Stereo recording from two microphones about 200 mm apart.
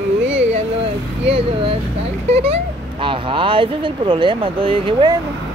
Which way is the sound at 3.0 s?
25° right (ahead or behind).